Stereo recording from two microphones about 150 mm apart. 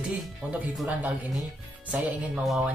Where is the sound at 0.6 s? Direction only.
10° right (ahead or behind).